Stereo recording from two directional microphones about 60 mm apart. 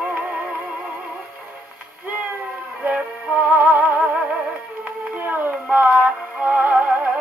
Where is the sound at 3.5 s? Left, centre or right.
Right.